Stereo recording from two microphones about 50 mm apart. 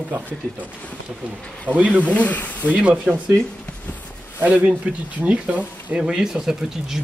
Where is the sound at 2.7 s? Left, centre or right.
Right.